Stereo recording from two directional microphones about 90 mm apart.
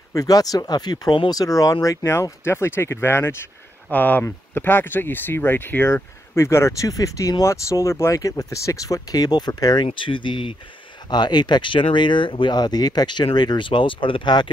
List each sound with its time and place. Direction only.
0.1 s speech: 40° left (ahead or behind); by 1.3 s 55° left (ahead or behind)
1.3 s speech: 40° left (ahead or behind)
2.4 s speech: 25° left (ahead or behind); by 9.8 s 45° left (ahead or behind)
9.9 s speech: 65° left (ahead or behind)
11.1 s speech: 55° left (ahead or behind)
12.5 s speech: 50° left (ahead or behind)